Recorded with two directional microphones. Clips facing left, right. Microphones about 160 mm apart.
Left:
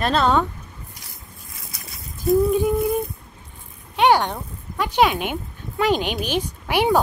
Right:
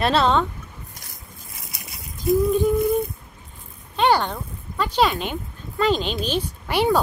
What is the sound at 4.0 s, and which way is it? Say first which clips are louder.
Speech: left 2 dB; 15° left (ahead or behind).